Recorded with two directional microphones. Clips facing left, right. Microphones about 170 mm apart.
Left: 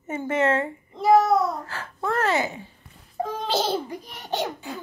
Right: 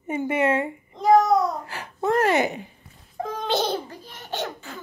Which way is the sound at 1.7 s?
20° right (ahead or behind).